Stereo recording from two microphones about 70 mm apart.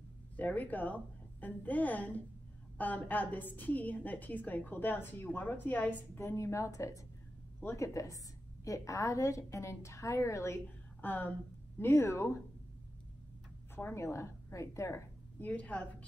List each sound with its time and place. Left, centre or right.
0.4 s a woman's voice: left
11.0 s speech: left
13.7 s a woman's voice: left
15.3 s a woman's voice: left